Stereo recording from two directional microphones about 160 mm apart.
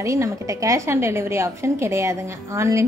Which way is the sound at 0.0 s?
20° right (ahead or behind).